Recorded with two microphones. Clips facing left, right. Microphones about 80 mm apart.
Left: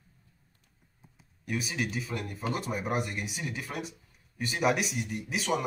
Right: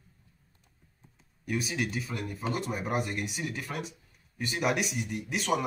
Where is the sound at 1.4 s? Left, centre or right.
Centre.